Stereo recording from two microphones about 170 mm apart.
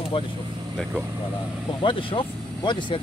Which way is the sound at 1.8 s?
30° left (ahead or behind).